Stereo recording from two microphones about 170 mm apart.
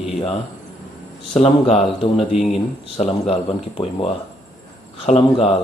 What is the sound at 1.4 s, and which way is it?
Speech, 35° left (ahead or behind).